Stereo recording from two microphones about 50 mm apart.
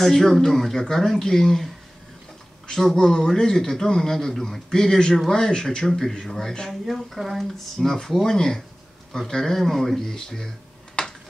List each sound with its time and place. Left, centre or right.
0.0 s a man's voice: centre
2.7 s a man's voice: centre
6.9 s a man's voice: centre
11.0 s a sound: centre